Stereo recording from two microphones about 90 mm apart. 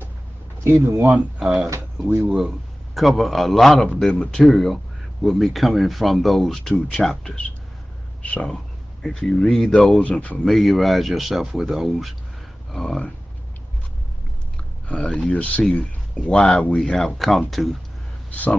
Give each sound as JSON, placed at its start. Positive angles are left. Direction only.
{"t": 0.7, "sound": "speech", "side_deg": -30}
{"t": 1.1, "sound": "speech", "side_deg": -5}
{"t": 2.0, "sound": "speech", "side_deg": -20}
{"t": 2.3, "sound": "speech", "side_deg": -5}
{"t": 4.5, "sound": "speech", "side_deg": 0}
{"t": 14.9, "sound": "speech", "side_deg": 10}
{"t": 18.3, "sound": "speech", "side_deg": 15}